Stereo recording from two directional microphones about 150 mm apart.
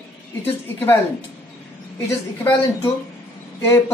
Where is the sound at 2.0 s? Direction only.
15° left (ahead or behind).